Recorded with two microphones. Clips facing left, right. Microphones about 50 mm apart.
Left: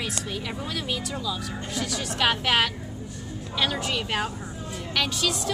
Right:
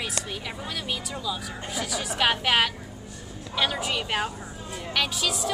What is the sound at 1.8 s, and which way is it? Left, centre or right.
A woman's voice, centre.